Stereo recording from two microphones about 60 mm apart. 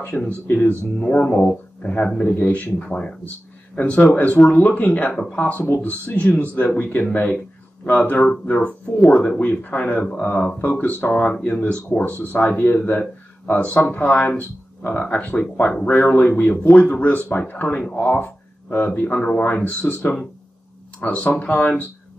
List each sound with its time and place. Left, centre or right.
0.1 s speech: centre
11.3 s speech: centre
12.2 s speech: left
21.0 s speech: left